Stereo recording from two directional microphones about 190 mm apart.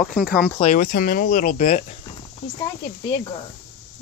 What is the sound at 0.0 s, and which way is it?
Speech, centre (ahead or behind).